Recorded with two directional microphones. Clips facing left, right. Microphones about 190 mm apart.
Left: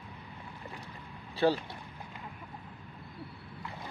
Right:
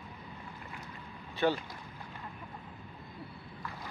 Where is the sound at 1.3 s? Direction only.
35° left (ahead or behind).